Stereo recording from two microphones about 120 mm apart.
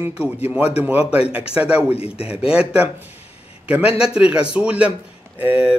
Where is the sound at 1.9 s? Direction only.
55° left (ahead or behind).